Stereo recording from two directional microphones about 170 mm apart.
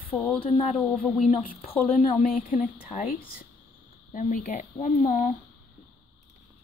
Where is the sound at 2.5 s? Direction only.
50° left (ahead or behind).